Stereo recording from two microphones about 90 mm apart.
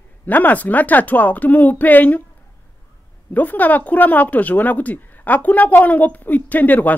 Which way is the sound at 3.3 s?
20° left (ahead or behind).